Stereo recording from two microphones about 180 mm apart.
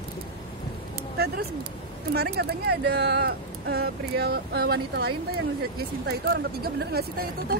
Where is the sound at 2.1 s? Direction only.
65° right (ahead or behind).